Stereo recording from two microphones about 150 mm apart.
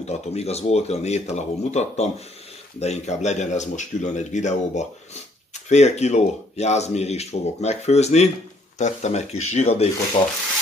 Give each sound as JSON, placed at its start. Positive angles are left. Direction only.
{"t": 0.0, "sound": "speech", "side_deg": 45}